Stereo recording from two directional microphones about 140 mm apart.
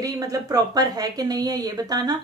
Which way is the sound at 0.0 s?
25° right (ahead or behind).